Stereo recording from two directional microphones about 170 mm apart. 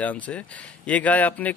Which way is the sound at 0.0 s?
10° left (ahead or behind).